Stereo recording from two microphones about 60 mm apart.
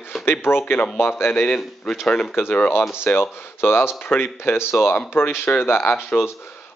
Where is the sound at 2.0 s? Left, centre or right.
Centre.